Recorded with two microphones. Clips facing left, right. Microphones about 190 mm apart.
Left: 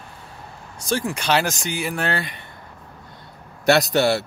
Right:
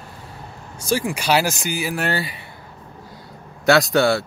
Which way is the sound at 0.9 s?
5° right (ahead or behind).